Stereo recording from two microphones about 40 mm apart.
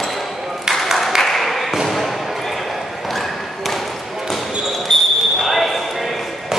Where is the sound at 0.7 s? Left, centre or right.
Centre.